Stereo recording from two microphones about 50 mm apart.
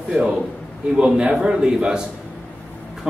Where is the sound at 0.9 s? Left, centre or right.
Centre.